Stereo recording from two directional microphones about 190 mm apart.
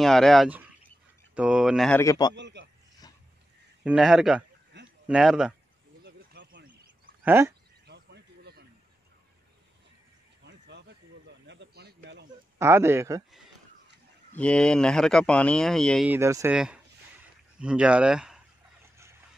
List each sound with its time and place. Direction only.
0.0 s speech: centre (ahead or behind)
2.0 s a man's voice: 20° left (ahead or behind)
2.3 s a man's voice: 65° right (ahead or behind)
3.8 s speech: 5° right (ahead or behind)
6.0 s a sound: 75° right (ahead or behind)
7.2 s speech: 10° right (ahead or behind)
7.8 s a sound: 60° right (ahead or behind)
10.4 s a sound: 65° right (ahead or behind)
12.5 s speech: 15° right (ahead or behind)
14.4 s speech: 5° left (ahead or behind)
16.1 s speech: 15° right (ahead or behind)
16.5 s speech: 5° right (ahead or behind)